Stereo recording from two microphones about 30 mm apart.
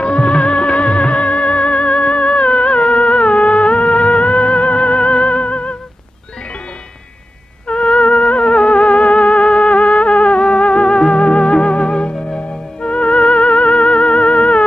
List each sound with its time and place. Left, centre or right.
0.0 s music: left
7.6 s theremin: left
10.5 s music: left